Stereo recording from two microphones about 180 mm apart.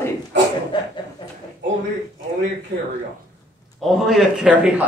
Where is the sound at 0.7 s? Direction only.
25° left (ahead or behind).